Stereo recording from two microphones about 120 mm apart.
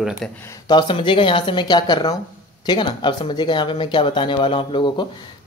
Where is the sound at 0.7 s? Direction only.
40° left (ahead or behind).